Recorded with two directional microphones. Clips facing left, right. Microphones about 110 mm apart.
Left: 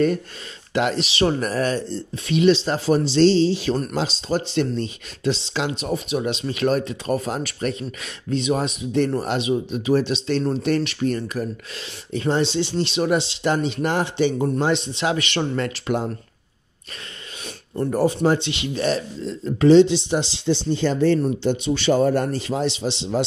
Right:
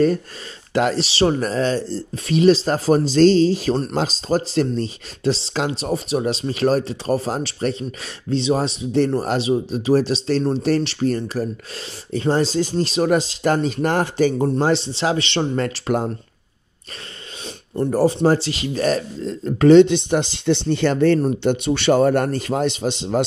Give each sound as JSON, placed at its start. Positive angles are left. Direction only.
{"t": 0.7, "sound": "speech", "side_deg": -35}
{"t": 1.2, "sound": "speech", "side_deg": -25}
{"t": 17.8, "sound": "speech", "side_deg": -35}